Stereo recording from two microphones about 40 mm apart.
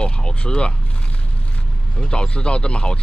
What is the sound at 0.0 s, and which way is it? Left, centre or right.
Speech, left.